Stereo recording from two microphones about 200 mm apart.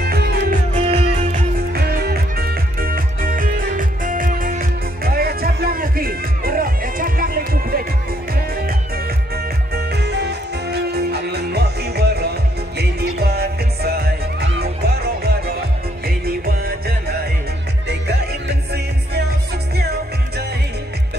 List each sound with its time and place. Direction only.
0.0 s music: 50° right (ahead or behind)
0.7 s music: 30° right (ahead or behind)
1.7 s music: 50° right (ahead or behind)
9.8 s music: 55° right (ahead or behind)